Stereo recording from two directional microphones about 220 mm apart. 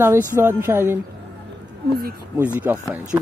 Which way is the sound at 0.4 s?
10° right (ahead or behind).